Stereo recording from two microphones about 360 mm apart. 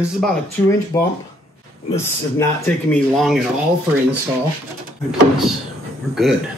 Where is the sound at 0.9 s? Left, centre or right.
Centre.